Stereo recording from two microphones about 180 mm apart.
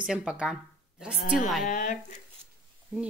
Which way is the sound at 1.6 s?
45° left (ahead or behind).